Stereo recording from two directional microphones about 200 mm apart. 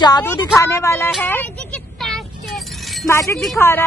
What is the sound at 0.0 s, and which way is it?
A woman's voice, 15° left (ahead or behind).